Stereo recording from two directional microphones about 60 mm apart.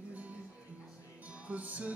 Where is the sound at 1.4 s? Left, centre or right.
Right.